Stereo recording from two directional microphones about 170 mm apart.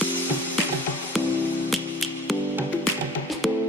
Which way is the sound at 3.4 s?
Centre (ahead or behind).